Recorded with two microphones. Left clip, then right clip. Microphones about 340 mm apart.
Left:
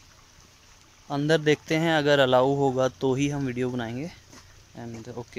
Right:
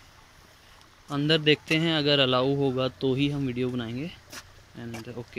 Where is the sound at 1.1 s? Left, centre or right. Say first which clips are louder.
Even; centre.